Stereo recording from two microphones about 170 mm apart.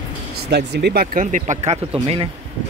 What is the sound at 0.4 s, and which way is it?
Speech, 70° right (ahead or behind).